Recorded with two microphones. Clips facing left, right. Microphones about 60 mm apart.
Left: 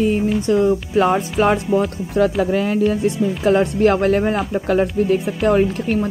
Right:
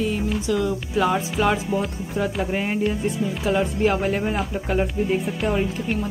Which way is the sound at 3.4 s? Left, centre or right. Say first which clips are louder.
Left 6 dB; left.